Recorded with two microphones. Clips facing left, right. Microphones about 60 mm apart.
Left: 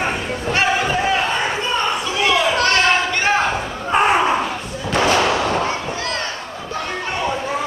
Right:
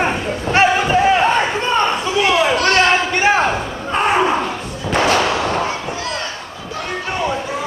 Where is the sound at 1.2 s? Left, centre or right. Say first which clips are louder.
Right 4 dB; right.